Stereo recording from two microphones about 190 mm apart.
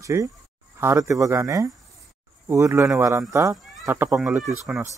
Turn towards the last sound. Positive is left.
turn(degrees=0)  # may be behind; listen again after turning